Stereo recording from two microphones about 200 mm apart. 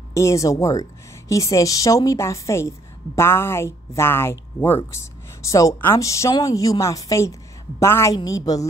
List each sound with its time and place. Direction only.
0.1 s a woman's voice: 15° left (ahead or behind)